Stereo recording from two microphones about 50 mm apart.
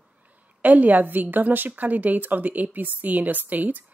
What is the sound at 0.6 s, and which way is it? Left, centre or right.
A woman's voice, right.